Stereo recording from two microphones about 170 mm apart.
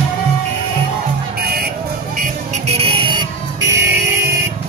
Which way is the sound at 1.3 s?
65° right (ahead or behind).